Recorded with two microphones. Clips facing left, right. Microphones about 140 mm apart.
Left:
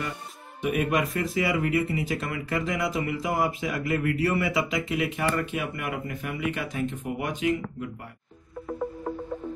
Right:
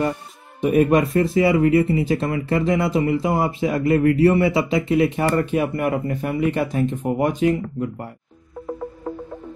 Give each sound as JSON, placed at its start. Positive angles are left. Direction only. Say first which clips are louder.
{"t": 0.6, "sound": "speech", "louder": "right 9 dB", "side_deg": -35}